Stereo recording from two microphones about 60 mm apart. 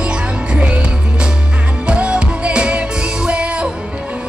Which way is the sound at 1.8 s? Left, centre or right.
Centre.